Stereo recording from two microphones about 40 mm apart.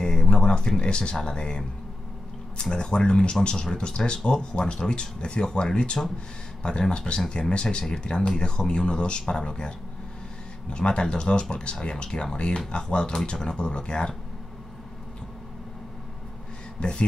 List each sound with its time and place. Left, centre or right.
0.0 s a sound: centre
1.1 s speech: left
16.8 s speech: left